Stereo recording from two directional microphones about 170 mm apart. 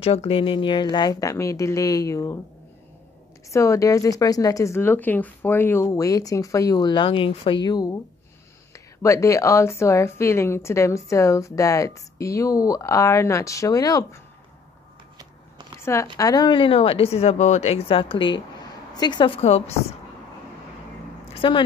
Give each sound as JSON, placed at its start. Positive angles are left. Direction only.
{"t": 0.0, "sound": "speech", "side_deg": 35}
{"t": 3.4, "sound": "a woman's voice", "side_deg": 20}
{"t": 15.8, "sound": "speech", "side_deg": 15}
{"t": 21.4, "sound": "speech", "side_deg": 30}